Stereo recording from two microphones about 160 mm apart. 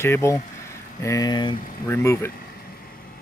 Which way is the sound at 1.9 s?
15° left (ahead or behind).